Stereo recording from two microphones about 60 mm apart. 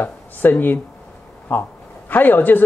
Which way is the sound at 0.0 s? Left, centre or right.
Left.